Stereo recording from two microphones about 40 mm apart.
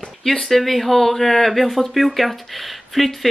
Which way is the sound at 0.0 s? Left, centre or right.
Centre.